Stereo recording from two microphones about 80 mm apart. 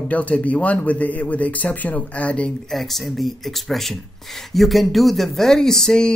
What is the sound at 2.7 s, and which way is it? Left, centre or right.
Speech, centre.